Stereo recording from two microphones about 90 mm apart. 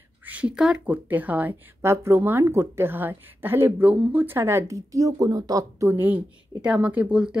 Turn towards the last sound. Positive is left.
turn(degrees=-10)  # may be behind; listen again after turning